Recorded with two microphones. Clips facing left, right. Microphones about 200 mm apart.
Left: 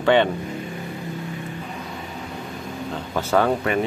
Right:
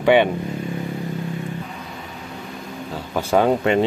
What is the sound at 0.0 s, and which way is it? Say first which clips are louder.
Speech: right 2 dB; 15° right (ahead or behind).